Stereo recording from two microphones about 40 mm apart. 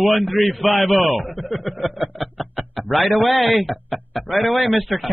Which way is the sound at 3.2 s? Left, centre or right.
Centre.